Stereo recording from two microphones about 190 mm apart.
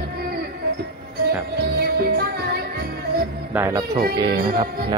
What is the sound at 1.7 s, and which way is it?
Music, 55° right (ahead or behind).